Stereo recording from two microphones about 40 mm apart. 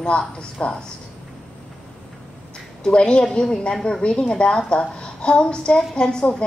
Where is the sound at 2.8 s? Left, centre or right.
Left.